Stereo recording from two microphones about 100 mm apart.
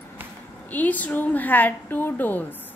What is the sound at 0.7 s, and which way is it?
A woman's voice, 15° left (ahead or behind).